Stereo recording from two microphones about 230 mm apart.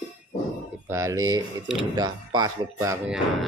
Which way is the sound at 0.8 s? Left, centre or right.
Centre.